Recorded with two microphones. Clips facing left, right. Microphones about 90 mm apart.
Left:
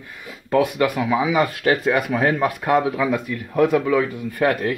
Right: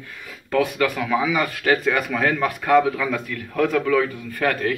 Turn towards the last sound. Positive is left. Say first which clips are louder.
# left 2 dB
turn(degrees=25)  # may be behind; listen again after turning